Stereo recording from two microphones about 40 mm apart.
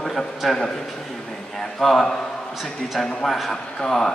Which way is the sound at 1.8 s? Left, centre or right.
Centre.